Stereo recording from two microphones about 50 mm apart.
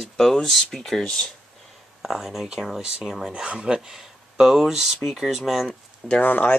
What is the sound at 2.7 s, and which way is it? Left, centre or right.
Speech, centre.